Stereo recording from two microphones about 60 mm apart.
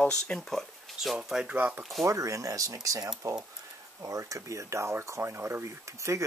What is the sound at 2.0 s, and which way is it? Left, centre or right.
Speech, right.